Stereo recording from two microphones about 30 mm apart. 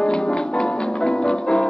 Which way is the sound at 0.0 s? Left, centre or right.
Left.